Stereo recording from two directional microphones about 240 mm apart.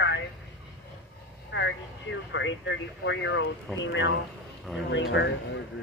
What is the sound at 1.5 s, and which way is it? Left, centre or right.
Speech, left.